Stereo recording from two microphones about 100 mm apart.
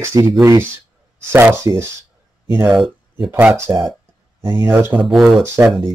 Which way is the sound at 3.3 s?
15° right (ahead or behind).